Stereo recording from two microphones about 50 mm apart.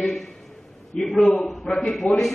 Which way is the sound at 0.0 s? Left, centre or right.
Centre.